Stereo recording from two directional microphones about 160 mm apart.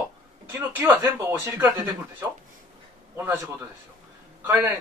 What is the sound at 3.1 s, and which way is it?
Speech, 15° right (ahead or behind).